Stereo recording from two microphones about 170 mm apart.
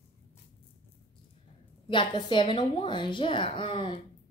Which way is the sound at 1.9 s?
30° left (ahead or behind).